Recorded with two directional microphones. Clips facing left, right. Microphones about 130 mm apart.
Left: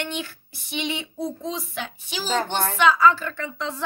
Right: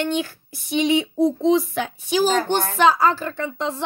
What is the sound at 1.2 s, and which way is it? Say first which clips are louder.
Speech: right 10 dB; 20° right (ahead or behind).